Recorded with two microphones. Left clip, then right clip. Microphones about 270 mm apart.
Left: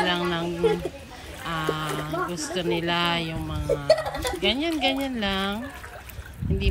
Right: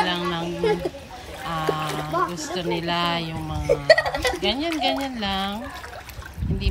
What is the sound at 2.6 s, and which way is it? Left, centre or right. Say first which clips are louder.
Speech: even; centre.